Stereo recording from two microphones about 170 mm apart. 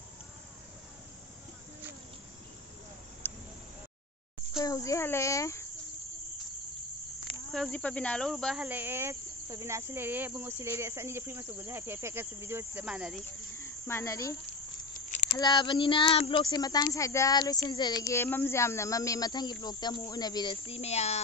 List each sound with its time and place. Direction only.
3.2 s a sound: 10° left (ahead or behind)
4.6 s a child's voice: 20° left (ahead or behind)
7.2 s speech: 5° left (ahead or behind)
8.6 s speech: 10° right (ahead or behind)
12.8 s cricket: 5° right (ahead or behind)
13.6 s cricket: 15° left (ahead or behind)
15.0 s a sound: 45° left (ahead or behind)
15.3 s speech: 25° left (ahead or behind); by 21.2 s 40° left (ahead or behind)